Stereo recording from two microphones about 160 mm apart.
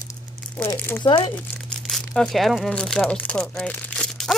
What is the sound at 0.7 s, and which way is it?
Speech, 15° left (ahead or behind).